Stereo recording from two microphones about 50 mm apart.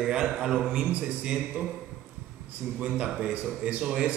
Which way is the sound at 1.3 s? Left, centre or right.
Centre.